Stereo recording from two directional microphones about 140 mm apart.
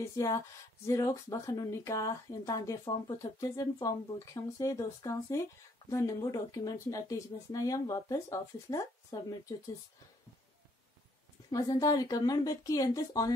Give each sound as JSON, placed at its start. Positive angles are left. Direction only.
{"t": 0.1, "sound": "speech", "side_deg": 20}
{"t": 11.5, "sound": "speech", "side_deg": 25}